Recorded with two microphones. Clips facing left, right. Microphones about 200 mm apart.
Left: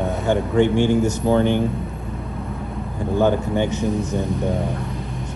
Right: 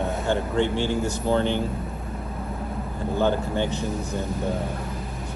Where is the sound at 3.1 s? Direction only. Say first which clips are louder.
Left 5 dB; 15° left (ahead or behind).